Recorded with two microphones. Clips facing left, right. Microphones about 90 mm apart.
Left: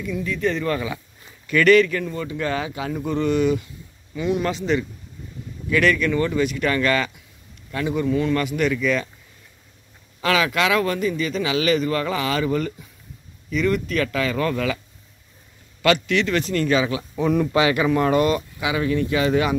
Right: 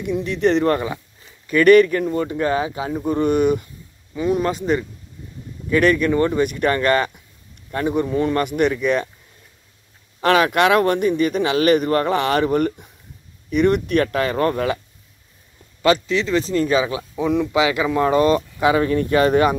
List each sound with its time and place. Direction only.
0.0 s speech: 65° right (ahead or behind)
0.7 s speech: 45° right (ahead or behind); by 3.3 s 25° right (ahead or behind)
3.3 s speech: 50° right (ahead or behind)
4.2 s speech: 40° right (ahead or behind)
8.5 s speech: 55° right (ahead or behind)
10.2 s speech: 50° right (ahead or behind)
14.0 s speech: 40° right (ahead or behind)
15.8 s speech: 30° right (ahead or behind)
17.1 s speech: 5° right (ahead or behind)
17.6 s speech: 20° right (ahead or behind); by 19.5 s 45° right (ahead or behind)